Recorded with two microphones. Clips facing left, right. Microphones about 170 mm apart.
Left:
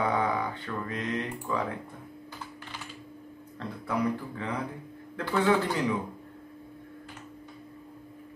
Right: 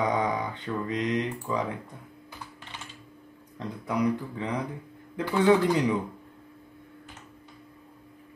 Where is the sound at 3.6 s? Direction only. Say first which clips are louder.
Right 2 dB; 15° right (ahead or behind).